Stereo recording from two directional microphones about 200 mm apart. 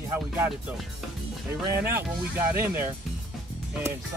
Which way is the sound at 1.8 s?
10° right (ahead or behind).